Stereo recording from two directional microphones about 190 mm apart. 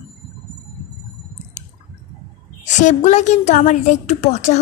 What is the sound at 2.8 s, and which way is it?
A woman's voice, 40° left (ahead or behind).